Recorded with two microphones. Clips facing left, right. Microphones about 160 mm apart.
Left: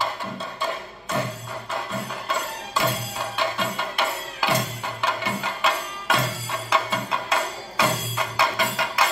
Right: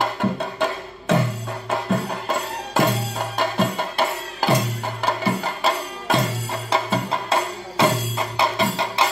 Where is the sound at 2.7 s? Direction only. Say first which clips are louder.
Right 6 dB; 45° right (ahead or behind).